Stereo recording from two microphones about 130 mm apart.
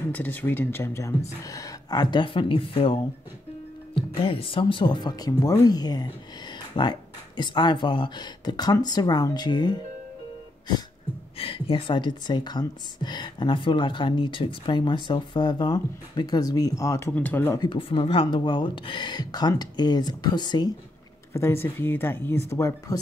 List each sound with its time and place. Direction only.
0.1 s speech: 15° left (ahead or behind); by 9.8 s 35° left (ahead or behind)
11.3 s speech: 45° left (ahead or behind); by 17.1 s 25° left (ahead or behind)
17.1 s speech: 10° left (ahead or behind)
17.6 s speech: 40° left (ahead or behind)
21.3 s speech: 20° left (ahead or behind)